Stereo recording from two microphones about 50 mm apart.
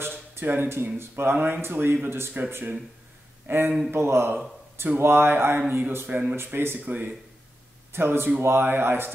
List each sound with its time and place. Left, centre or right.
0.0 s speech: right
3.4 s speech: right
3.9 s speech: right
6.3 s speech: right
7.9 s speech: right